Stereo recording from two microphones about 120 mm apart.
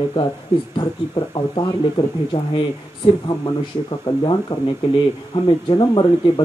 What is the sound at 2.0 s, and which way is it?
Speech, 40° left (ahead or behind).